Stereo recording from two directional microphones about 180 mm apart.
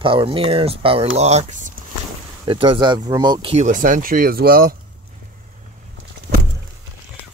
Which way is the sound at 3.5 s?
45° right (ahead or behind).